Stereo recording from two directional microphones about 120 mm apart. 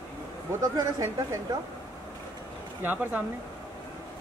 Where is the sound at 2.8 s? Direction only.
15° right (ahead or behind).